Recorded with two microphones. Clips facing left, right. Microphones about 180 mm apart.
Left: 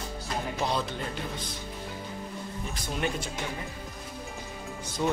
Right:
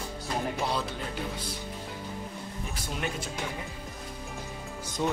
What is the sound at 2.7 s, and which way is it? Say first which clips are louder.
Speech: left 3 dB; centre (ahead or behind).